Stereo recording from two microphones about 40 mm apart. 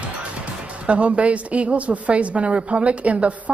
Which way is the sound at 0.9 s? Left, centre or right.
Right.